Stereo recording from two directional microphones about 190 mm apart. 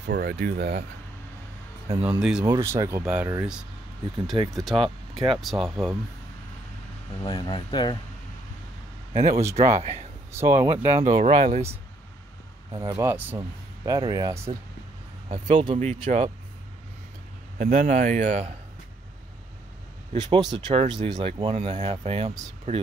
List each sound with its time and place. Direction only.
0.0 s speech: 55° right (ahead or behind)
1.9 s speech: 30° right (ahead or behind)
2.1 s speech: 5° right (ahead or behind)
2.4 s speech: 15° right (ahead or behind); by 5.9 s centre (ahead or behind)
7.2 s speech: 25° left (ahead or behind)
9.1 s speech: 35° right (ahead or behind)
10.3 s speech: 15° right (ahead or behind)
10.8 s speech: 30° right (ahead or behind)
12.9 s speech: 10° right (ahead or behind)
15.2 s speech: 40° right (ahead or behind)
17.6 s speech: 40° right (ahead or behind)
20.5 s speech: 25° right (ahead or behind)